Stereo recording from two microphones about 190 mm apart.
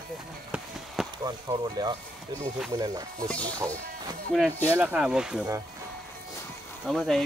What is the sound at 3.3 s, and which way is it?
Speech, 5° left (ahead or behind).